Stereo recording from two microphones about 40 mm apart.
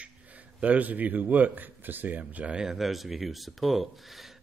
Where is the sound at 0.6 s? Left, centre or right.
Right.